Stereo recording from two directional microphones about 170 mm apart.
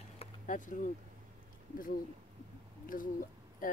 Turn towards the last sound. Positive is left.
turn(degrees=50)  # may be behind; listen again after turning